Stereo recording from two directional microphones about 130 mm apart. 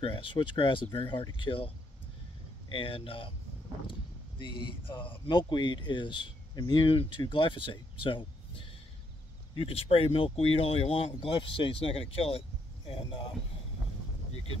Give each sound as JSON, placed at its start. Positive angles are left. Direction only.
{"t": 0.0, "sound": "speech", "side_deg": 40}
{"t": 2.7, "sound": "speech", "side_deg": 45}
{"t": 4.4, "sound": "speech", "side_deg": 40}